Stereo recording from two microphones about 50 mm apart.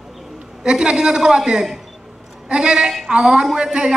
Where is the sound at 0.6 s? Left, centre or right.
Centre.